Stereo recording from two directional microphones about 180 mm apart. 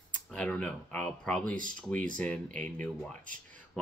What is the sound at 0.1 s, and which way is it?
Speech, 5° left (ahead or behind).